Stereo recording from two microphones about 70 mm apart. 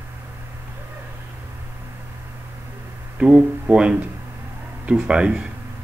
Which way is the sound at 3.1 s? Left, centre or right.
Centre.